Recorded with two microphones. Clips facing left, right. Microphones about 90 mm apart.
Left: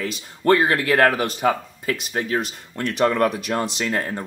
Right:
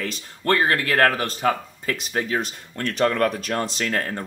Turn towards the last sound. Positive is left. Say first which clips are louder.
# left 1 dB
turn(degrees=10)  # may be behind; listen again after turning